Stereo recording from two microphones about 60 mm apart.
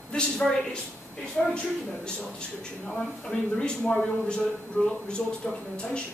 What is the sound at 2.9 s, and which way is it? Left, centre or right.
Speech, centre.